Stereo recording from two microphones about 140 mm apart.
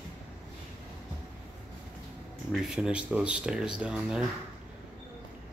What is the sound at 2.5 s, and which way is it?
Speech, 5° right (ahead or behind).